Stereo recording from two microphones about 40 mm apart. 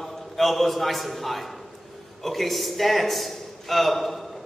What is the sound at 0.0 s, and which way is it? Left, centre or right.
A man's voice, centre.